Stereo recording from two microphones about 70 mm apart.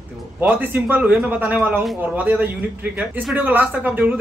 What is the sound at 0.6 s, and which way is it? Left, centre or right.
Speech, right.